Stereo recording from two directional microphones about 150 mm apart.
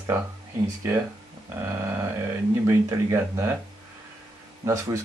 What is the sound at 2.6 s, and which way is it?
Speech, 20° right (ahead or behind).